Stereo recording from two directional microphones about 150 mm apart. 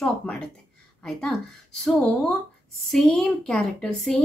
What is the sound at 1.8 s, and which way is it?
A woman's voice, 5° left (ahead or behind).